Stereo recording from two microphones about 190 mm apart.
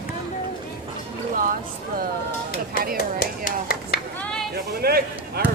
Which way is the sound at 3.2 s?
50° left (ahead or behind).